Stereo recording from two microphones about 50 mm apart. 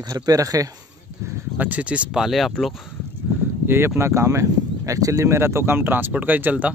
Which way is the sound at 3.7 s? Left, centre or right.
Right.